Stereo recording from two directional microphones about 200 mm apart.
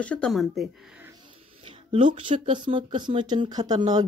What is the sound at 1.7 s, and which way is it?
Speech, 25° right (ahead or behind).